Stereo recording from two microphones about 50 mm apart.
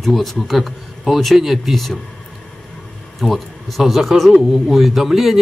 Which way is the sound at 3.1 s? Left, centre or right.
Centre.